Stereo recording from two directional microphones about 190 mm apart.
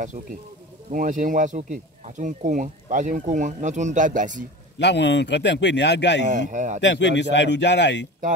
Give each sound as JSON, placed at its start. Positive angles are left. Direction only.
{"t": 0.9, "sound": "speech", "side_deg": -45}
{"t": 4.7, "sound": "a man's voice", "side_deg": 65}
{"t": 6.2, "sound": "speech", "side_deg": -40}
{"t": 6.8, "sound": "speech", "side_deg": 65}